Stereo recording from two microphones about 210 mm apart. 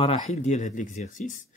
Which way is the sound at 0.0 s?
30° left (ahead or behind).